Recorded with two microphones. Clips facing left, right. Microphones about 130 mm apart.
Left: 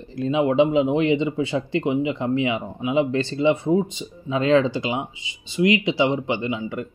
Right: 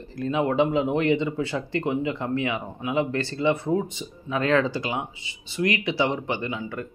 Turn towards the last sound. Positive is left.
turn(degrees=20)  # may be behind; listen again after turning